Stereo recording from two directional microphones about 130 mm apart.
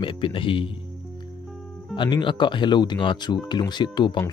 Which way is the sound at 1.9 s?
35° left (ahead or behind).